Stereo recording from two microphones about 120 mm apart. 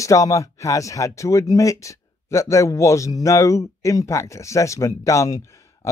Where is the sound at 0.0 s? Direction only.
25° left (ahead or behind).